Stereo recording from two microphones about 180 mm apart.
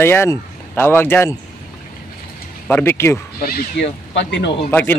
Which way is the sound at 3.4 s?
60° left (ahead or behind).